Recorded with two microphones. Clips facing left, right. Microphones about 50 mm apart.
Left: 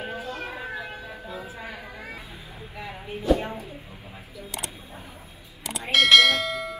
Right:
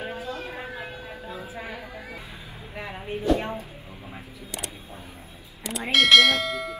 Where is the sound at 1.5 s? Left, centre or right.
Right.